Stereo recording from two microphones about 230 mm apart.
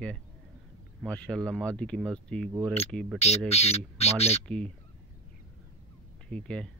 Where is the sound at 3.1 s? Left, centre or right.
Left.